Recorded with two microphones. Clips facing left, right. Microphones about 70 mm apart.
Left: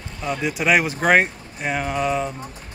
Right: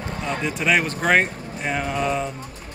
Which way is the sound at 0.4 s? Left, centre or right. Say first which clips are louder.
Left 2 dB; centre.